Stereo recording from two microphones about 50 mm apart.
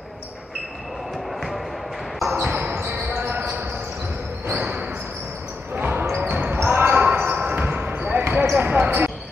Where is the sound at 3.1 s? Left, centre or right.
Right.